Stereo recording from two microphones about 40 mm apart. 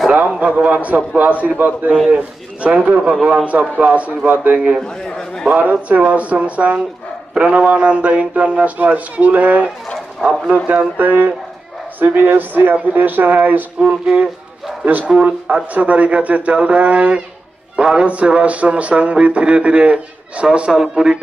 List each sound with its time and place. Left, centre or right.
0.3 s speech: right
4.8 s a sound: centre
5.5 s speech: right
10.2 s speech: centre
10.7 s speech: right
13.7 s speech: right